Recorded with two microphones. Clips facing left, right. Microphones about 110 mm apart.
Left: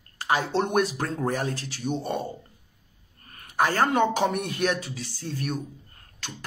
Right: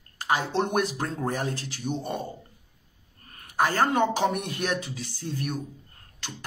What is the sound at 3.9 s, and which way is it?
Speech, 35° right (ahead or behind).